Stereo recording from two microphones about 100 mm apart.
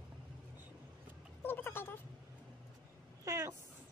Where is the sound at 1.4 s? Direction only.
20° left (ahead or behind).